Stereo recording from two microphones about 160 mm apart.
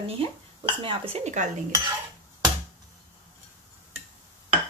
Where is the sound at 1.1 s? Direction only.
45° right (ahead or behind).